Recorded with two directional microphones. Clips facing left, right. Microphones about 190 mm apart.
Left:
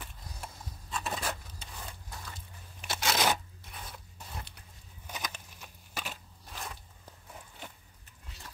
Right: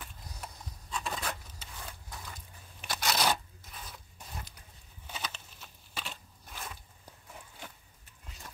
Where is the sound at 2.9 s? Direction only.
25° left (ahead or behind).